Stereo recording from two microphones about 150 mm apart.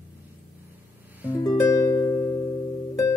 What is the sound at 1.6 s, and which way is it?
Music, 20° left (ahead or behind).